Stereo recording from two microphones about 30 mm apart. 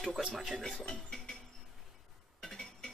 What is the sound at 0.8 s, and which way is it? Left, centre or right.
Speech, centre.